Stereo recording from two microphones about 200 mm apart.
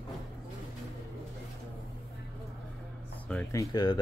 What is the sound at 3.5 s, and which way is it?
Speech, 15° left (ahead or behind).